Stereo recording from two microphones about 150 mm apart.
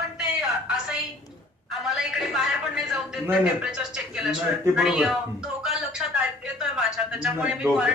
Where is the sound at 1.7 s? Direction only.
Centre (ahead or behind).